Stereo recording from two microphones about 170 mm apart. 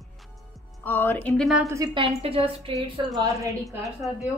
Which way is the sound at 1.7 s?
20° right (ahead or behind).